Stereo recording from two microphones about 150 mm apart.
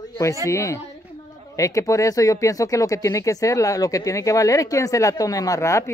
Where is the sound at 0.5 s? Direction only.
20° left (ahead or behind).